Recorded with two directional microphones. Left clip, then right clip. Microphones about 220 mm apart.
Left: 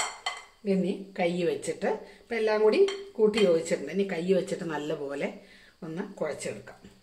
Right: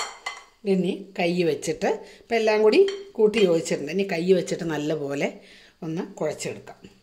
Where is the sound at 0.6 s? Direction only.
45° right (ahead or behind).